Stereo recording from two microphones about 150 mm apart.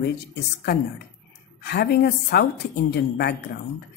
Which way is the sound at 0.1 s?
90° left.